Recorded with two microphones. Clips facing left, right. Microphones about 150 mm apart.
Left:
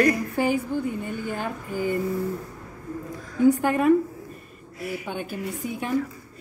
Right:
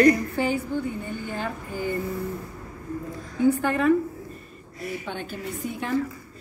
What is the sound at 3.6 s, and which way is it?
A man's voice, 10° left (ahead or behind).